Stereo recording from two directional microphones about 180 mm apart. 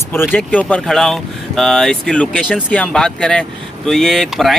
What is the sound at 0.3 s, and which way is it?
Speech, 5° left (ahead or behind).